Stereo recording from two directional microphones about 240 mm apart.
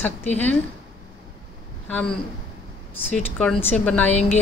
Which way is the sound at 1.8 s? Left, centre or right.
Centre.